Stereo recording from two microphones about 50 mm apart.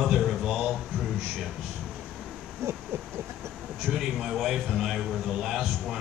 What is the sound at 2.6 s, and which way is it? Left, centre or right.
Hoot, right.